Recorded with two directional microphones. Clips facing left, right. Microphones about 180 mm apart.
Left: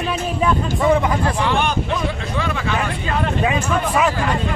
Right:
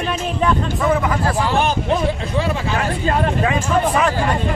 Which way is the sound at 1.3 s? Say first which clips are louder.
Right 1 dB; 40° right (ahead or behind).